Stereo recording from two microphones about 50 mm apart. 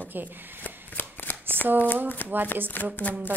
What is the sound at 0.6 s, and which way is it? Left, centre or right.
Shuffling cards, left.